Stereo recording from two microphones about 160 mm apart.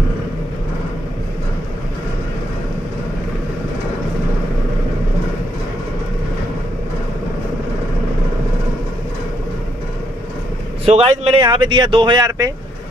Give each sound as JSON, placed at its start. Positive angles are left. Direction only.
{"t": 10.9, "sound": "a man's voice", "side_deg": -40}
{"t": 11.4, "sound": "speech", "side_deg": -30}